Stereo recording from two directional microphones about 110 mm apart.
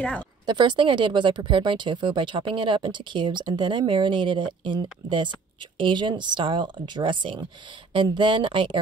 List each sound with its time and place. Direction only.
0.5 s speech: 45° right (ahead or behind)